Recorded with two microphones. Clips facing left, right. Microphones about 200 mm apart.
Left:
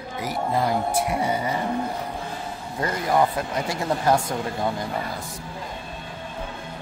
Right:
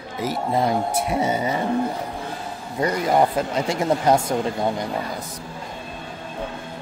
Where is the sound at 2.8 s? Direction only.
20° right (ahead or behind).